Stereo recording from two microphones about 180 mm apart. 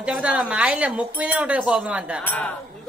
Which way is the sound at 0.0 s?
5° right (ahead or behind).